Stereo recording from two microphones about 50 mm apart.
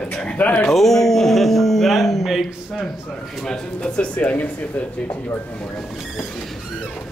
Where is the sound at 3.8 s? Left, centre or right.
Left.